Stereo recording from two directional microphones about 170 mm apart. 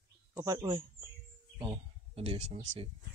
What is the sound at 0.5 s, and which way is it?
Speech, 30° right (ahead or behind).